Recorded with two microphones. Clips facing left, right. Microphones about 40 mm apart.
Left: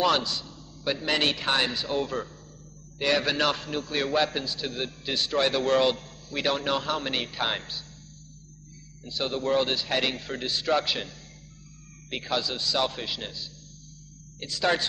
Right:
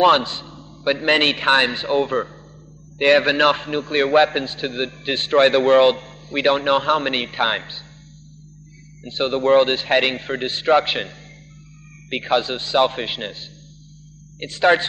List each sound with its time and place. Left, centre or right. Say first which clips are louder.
0.0 s a man's voice: right 9 dB; right
9.0 s a man's voice: right 9 dB; right